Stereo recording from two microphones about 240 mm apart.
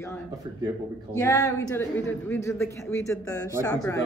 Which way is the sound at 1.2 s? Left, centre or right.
Centre.